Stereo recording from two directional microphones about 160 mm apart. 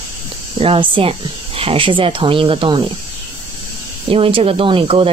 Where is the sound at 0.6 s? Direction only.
35° right (ahead or behind).